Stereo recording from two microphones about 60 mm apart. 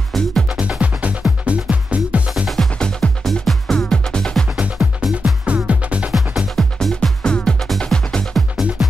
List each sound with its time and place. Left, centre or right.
0.1 s music: centre
0.6 s music: right
2.4 s music: centre
4.7 s music: centre
5.4 s music: right
6.1 s music: centre
8.4 s music: centre